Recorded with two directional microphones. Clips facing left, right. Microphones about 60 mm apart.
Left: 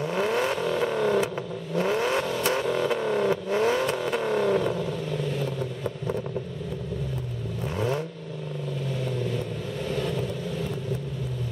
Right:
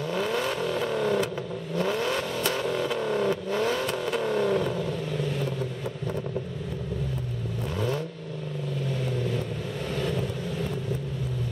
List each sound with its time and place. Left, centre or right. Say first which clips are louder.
0.0 s vehicle: left 2 dB; left
0.6 s vehicle: left 2 dB; centre
2.6 s vehicle: left 2 dB; centre
7.7 s vehicle: left 2 dB; centre
9.0 s vehicle: left 1 dB; centre